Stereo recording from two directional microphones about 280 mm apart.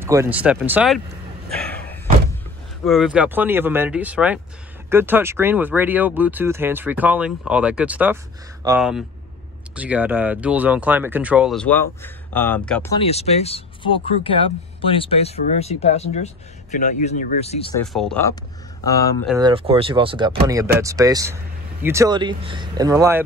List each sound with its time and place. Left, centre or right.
0.0 s speech: centre
1.6 s slam: centre
2.8 s speech: centre
12.9 s speech: left
17.7 s speech: centre
19.2 s speech: centre